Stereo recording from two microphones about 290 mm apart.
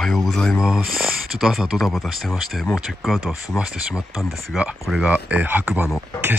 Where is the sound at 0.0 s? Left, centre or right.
Centre.